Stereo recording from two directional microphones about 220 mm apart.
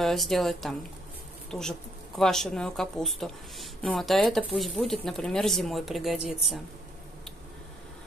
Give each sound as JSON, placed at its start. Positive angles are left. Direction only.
{"t": 0.0, "sound": "speech", "side_deg": 0}